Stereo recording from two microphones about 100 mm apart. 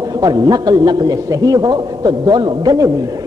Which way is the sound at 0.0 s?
40° right (ahead or behind).